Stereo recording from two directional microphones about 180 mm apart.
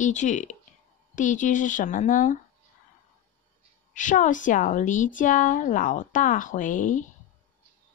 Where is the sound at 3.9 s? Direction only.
45° left (ahead or behind).